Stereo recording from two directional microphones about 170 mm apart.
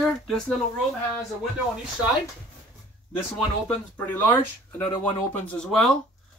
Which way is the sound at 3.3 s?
10° left (ahead or behind).